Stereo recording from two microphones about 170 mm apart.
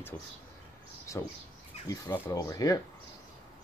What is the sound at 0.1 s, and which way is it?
Speech, 15° left (ahead or behind).